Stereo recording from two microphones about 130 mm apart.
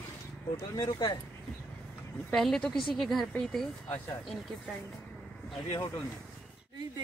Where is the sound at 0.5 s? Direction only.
35° left (ahead or behind).